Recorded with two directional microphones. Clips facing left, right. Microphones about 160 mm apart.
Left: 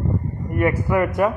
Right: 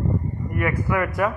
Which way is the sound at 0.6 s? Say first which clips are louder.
Left 4 dB; 25° left (ahead or behind).